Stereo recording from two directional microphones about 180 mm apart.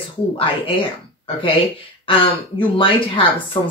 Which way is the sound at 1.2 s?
30° left (ahead or behind).